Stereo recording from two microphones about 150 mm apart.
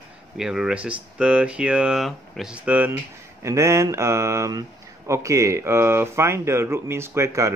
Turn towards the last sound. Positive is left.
turn(degrees=-20)  # may be behind; listen again after turning